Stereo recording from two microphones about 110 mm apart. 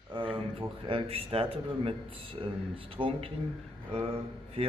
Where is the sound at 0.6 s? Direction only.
55° right (ahead or behind).